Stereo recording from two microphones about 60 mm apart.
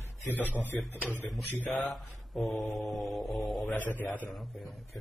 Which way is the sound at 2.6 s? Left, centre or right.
Left.